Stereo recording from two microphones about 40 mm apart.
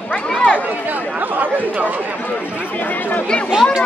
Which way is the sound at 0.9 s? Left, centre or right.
Right.